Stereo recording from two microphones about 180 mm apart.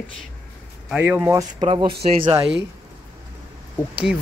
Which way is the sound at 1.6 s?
30° right (ahead or behind).